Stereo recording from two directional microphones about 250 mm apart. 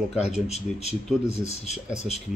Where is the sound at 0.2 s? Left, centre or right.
Left.